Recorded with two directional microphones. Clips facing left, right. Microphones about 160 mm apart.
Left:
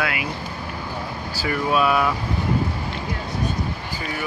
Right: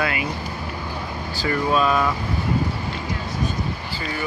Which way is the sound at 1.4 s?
10° left (ahead or behind).